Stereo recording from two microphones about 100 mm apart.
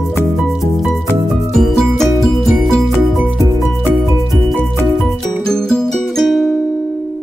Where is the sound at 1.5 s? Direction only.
5° left (ahead or behind).